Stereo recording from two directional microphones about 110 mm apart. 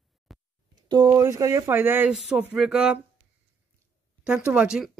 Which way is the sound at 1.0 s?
20° right (ahead or behind).